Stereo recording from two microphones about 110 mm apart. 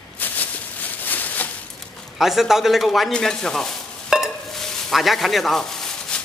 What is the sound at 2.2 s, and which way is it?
A man's voice, centre (ahead or behind).